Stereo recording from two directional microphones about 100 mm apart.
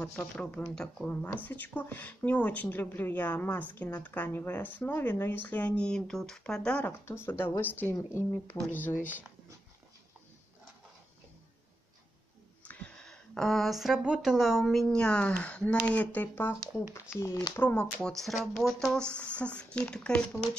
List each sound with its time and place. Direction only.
0.0 s speech: 10° left (ahead or behind)
7.1 s speech: 25° left (ahead or behind)
12.6 s speech: 15° left (ahead or behind)
18.1 s speech: centre (ahead or behind)